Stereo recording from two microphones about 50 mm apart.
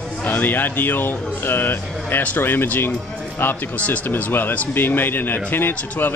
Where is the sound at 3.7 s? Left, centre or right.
Left.